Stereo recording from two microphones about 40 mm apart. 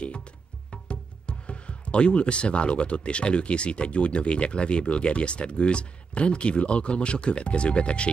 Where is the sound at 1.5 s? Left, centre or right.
Left.